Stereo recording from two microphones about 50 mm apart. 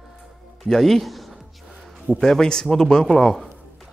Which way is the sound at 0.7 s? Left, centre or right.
Centre.